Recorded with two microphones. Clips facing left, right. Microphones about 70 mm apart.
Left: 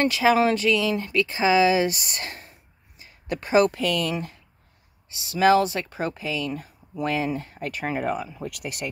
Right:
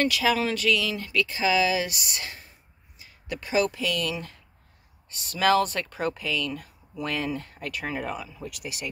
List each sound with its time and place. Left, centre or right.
0.0 s speech: left
5.3 s speech: centre
6.5 s a sound: left
7.2 s speech: left
8.5 s speech: left